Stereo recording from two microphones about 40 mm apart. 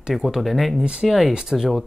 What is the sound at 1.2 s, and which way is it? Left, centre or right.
Speech, centre.